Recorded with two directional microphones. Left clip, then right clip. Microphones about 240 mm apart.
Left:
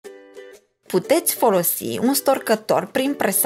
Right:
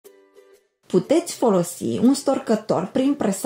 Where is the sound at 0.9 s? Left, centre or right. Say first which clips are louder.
Left 1 dB; left.